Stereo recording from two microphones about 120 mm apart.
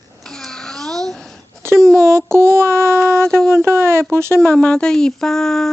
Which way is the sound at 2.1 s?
20° right (ahead or behind).